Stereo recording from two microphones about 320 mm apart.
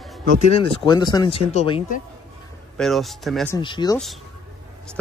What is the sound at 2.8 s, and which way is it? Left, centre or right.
Speech, centre.